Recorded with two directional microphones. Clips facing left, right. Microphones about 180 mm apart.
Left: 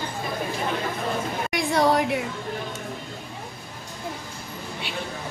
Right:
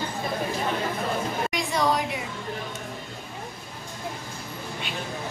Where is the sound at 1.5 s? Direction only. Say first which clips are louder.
Left 6 dB; 55° left (ahead or behind).